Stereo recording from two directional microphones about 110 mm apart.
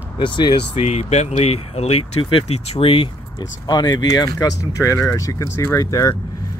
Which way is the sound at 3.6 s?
40° left (ahead or behind).